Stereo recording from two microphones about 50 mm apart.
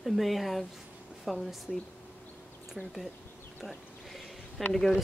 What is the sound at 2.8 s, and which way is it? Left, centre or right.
Speech, centre.